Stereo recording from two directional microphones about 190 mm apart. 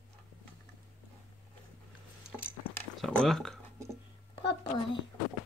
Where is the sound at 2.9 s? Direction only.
5° left (ahead or behind).